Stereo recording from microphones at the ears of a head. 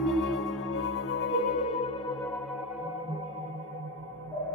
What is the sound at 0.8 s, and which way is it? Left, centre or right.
Music, left.